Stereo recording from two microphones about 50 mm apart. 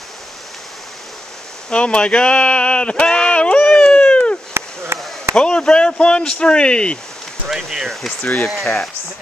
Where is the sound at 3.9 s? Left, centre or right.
Left.